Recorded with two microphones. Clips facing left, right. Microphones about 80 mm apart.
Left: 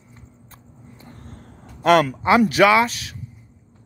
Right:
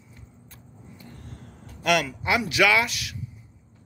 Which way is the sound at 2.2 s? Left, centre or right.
Left.